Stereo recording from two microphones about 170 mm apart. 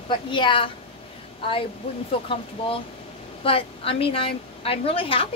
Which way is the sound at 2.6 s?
35° left (ahead or behind).